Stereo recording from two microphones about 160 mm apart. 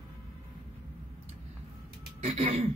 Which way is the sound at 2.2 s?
50° right (ahead or behind).